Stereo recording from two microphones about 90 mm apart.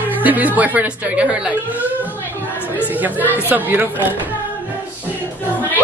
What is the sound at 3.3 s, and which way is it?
Speech, 20° right (ahead or behind).